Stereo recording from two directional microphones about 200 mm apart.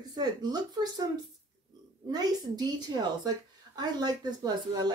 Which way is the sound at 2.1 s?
20° right (ahead or behind).